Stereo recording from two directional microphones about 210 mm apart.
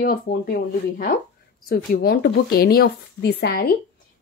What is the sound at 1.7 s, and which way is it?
Speech, 45° left (ahead or behind).